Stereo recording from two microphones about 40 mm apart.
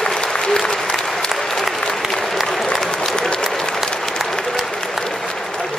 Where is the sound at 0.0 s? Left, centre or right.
Centre.